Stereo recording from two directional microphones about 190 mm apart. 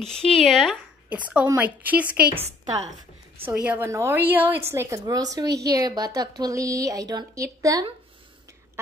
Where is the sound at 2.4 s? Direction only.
35° right (ahead or behind).